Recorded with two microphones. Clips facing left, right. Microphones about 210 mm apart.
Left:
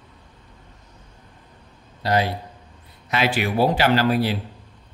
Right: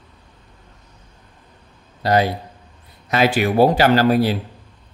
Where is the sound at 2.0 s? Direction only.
45° right (ahead or behind).